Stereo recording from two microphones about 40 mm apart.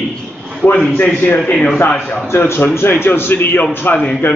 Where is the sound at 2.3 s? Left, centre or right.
Left.